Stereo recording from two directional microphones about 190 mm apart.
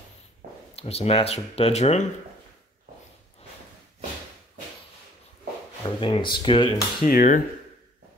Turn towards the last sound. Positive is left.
turn(degrees=45)  # may be behind; listen again after turning